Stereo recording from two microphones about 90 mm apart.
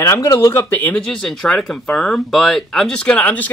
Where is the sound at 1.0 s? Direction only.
5° left (ahead or behind).